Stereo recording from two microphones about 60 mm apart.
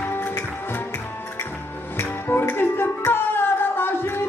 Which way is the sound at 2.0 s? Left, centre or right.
Left.